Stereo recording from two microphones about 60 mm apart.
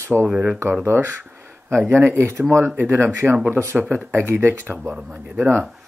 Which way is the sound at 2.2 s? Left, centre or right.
Right.